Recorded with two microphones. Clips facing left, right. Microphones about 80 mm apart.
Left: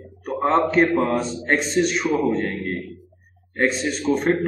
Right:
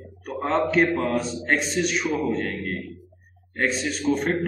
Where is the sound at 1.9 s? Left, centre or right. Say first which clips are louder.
Left 4 dB; left.